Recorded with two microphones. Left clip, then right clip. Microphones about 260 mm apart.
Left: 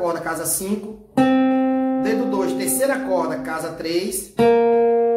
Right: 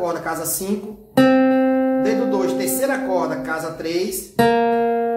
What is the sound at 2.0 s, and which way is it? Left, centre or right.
Speech, centre.